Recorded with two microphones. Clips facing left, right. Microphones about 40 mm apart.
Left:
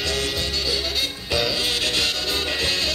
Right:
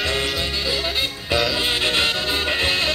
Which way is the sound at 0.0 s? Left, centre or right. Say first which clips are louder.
Right 2 dB; right.